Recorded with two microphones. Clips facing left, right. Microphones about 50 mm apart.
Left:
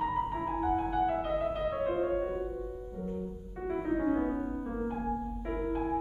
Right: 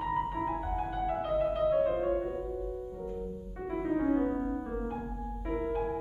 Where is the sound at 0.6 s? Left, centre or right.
Centre.